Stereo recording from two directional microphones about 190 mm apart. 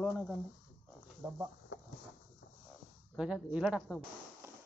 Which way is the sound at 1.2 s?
15° right (ahead or behind).